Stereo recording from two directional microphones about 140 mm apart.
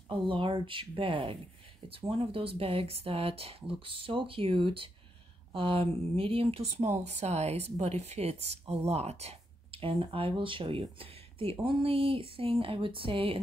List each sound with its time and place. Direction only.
0.1 s speech: 40° right (ahead or behind)